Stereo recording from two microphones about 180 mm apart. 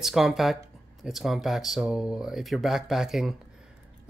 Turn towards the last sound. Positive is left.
turn(degrees=0)  # may be behind; listen again after turning